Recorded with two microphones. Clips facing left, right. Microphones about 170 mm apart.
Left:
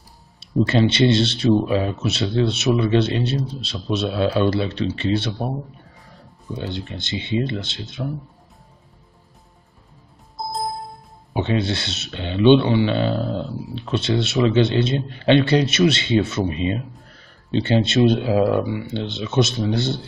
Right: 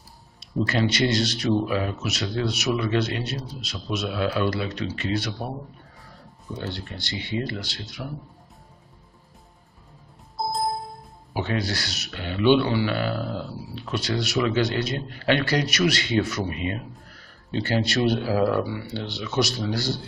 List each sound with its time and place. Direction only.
0.4 s speech: 25° left (ahead or behind)
11.3 s speech: 25° left (ahead or behind)